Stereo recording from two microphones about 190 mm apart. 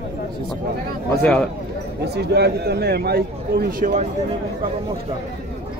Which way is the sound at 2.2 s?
60° right (ahead or behind).